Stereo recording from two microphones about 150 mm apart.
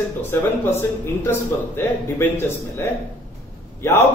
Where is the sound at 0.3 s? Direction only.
15° left (ahead or behind).